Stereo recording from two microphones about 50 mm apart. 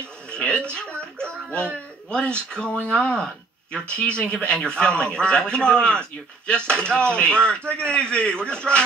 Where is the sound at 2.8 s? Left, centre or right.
Left.